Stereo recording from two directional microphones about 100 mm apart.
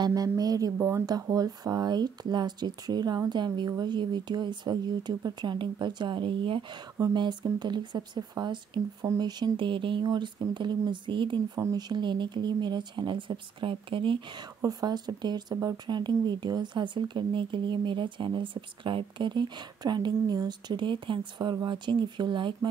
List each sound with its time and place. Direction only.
0.0 s speech: 40° right (ahead or behind)
0.7 s speech: 25° right (ahead or behind)
1.0 s speech: 40° right (ahead or behind); by 14.4 s 55° right (ahead or behind)
14.6 s speech: 40° right (ahead or behind)